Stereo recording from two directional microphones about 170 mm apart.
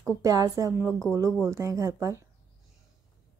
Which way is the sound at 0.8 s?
5° left (ahead or behind).